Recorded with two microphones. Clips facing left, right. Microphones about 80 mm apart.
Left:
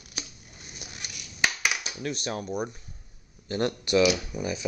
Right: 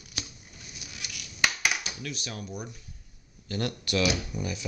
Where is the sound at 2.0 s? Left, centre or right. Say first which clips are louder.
Left 6 dB; left.